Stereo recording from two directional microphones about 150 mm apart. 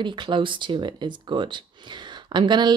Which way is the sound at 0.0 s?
30° right (ahead or behind).